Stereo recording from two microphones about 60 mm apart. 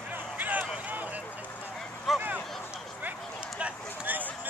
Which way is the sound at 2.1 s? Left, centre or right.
Centre.